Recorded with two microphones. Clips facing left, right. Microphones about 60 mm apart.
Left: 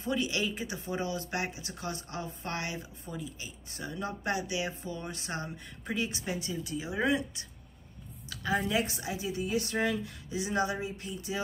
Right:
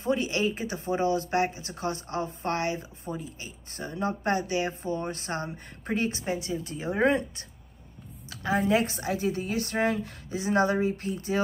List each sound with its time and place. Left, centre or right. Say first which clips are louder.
0.0 s speech: right 5 dB; right